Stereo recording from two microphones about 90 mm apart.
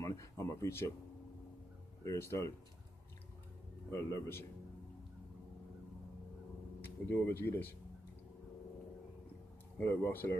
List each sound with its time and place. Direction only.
0.0 s a sound: 35° left (ahead or behind)
2.0 s speech: 30° left (ahead or behind)
3.9 s speech: 30° left (ahead or behind)
6.8 s speech: 25° left (ahead or behind)
9.8 s speech: 25° left (ahead or behind)